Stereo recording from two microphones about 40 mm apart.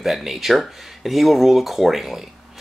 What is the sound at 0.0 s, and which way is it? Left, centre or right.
Speech, centre.